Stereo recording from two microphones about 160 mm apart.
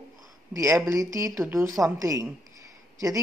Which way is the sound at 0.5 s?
20° right (ahead or behind).